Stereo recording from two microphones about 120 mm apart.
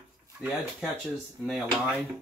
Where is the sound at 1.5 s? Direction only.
Centre (ahead or behind).